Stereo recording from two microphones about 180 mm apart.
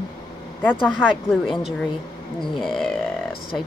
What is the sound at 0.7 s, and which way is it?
Speech, 5° right (ahead or behind).